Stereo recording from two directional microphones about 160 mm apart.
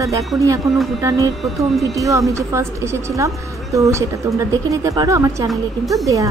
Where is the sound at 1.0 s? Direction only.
20° right (ahead or behind).